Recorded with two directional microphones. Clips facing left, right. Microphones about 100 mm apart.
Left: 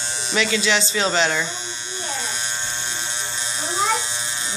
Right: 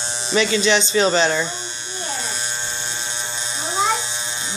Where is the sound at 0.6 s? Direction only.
5° left (ahead or behind).